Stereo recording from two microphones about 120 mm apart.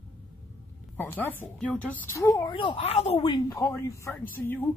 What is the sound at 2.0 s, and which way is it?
Speech, 20° left (ahead or behind).